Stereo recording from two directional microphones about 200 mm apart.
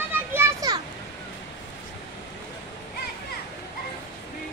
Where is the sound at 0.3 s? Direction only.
10° right (ahead or behind).